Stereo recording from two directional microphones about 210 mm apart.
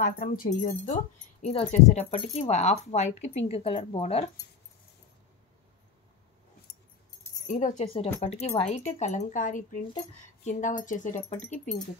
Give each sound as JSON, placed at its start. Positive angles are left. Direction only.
{"t": 0.0, "sound": "speech", "side_deg": 40}
{"t": 1.5, "sound": "speech", "side_deg": 30}
{"t": 7.4, "sound": "speech", "side_deg": 35}